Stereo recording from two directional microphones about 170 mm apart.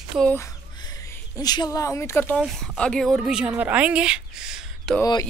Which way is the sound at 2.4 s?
Centre (ahead or behind).